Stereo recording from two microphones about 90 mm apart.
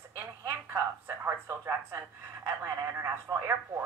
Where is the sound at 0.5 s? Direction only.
30° right (ahead or behind).